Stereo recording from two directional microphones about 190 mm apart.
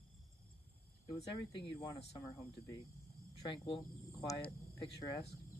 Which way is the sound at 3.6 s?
25° left (ahead or behind).